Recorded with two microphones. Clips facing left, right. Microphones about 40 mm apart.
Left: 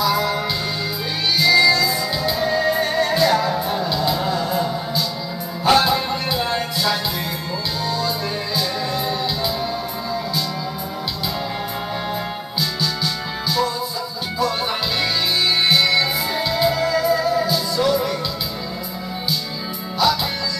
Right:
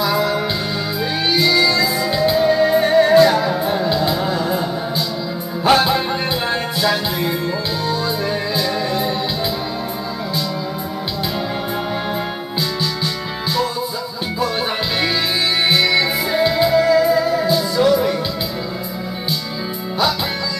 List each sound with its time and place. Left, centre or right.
0.0 s music: right
1.5 s music: centre
8.5 s music: centre
12.5 s music: right
15.7 s music: centre